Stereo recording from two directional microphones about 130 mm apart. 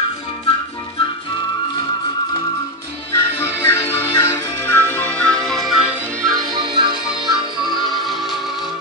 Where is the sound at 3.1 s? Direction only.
20° left (ahead or behind); by 5.9 s 5° right (ahead or behind).